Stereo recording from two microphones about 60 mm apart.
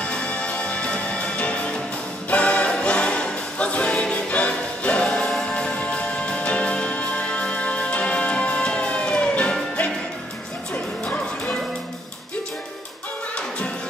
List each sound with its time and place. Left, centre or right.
0.0 s music: centre
5.0 s music: centre
5.5 s music: centre